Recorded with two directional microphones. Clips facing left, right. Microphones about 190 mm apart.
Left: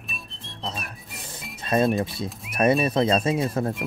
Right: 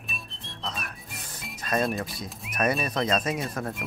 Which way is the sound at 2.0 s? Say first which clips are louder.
Left 6 dB; 25° left (ahead or behind).